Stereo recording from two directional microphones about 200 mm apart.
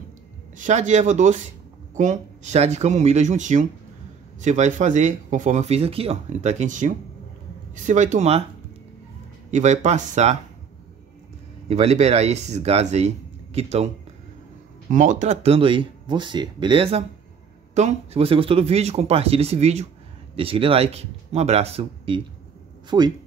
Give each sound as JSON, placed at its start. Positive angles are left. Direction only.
{"t": 0.6, "sound": "speech", "side_deg": -35}
{"t": 9.5, "sound": "speech", "side_deg": -35}
{"t": 11.7, "sound": "speech", "side_deg": -35}
{"t": 14.9, "sound": "speech", "side_deg": -40}